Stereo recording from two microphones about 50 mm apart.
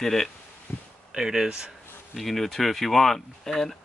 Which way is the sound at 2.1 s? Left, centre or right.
Centre.